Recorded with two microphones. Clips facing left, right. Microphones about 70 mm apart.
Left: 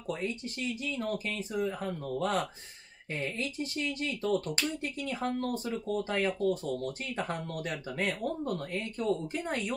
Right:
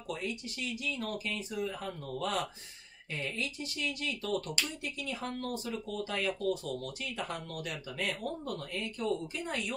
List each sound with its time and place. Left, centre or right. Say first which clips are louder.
0.1 s speech: left 3 dB; left